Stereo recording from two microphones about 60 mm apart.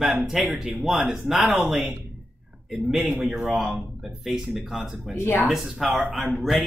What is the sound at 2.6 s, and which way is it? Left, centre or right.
Speech, centre.